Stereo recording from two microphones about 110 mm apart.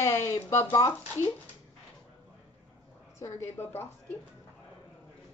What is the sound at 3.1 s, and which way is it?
Speech, 25° left (ahead or behind).